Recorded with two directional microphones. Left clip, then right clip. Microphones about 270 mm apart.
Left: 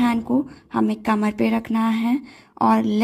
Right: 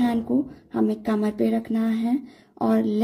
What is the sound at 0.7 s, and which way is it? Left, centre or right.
Speech, left.